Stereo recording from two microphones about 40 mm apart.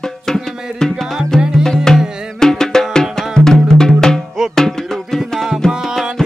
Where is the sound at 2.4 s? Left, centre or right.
Centre.